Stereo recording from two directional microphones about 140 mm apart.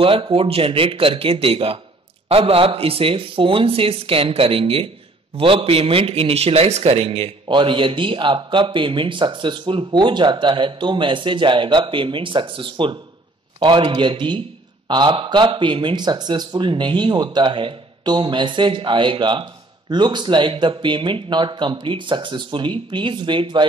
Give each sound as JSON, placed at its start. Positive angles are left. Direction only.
{"t": 0.0, "sound": "speech", "side_deg": -40}